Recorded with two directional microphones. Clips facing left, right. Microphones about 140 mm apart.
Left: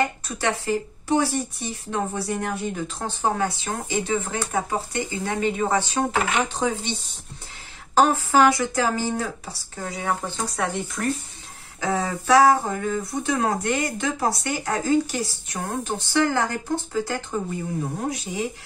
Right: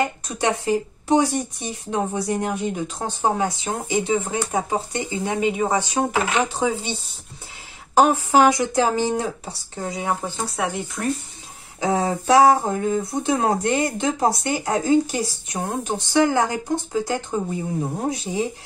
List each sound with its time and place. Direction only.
0.0 s speech: 20° right (ahead or behind)
11.8 s speech: 25° right (ahead or behind)